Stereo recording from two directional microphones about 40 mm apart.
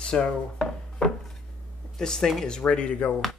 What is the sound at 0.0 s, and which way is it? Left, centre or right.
Dishes, centre.